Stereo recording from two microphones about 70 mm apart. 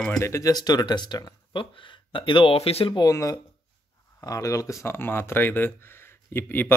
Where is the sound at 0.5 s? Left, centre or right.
Left.